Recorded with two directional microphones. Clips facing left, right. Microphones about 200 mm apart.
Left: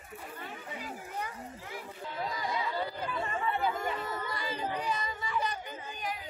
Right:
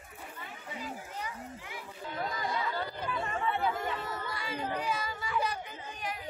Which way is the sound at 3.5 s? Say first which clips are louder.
Even; centre (ahead or behind).